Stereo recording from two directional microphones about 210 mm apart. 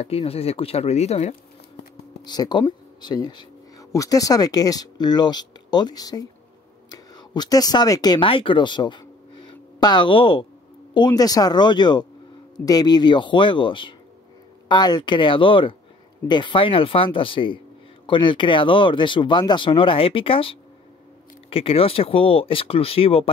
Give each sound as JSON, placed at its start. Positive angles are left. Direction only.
{"t": 0.0, "sound": "speech", "side_deg": 30}
{"t": 2.2, "sound": "speech", "side_deg": 20}